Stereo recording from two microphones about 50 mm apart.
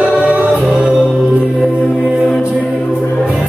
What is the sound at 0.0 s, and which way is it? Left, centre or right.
Music, right.